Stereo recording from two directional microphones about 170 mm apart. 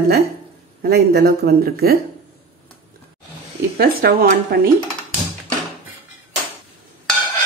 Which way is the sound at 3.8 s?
65° right (ahead or behind).